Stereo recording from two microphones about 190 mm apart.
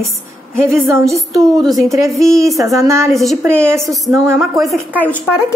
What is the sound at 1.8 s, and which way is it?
A woman's voice, 15° right (ahead or behind).